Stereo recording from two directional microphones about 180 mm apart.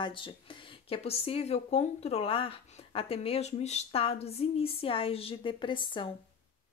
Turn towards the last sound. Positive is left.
turn(degrees=25)  # may be behind; listen again after turning